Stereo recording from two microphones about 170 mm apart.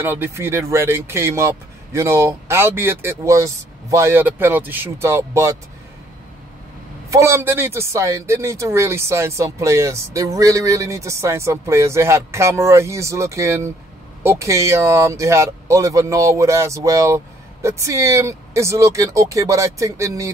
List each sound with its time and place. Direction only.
0.0 s a man's voice: 15° right (ahead or behind)
7.1 s a man's voice: 15° right (ahead or behind)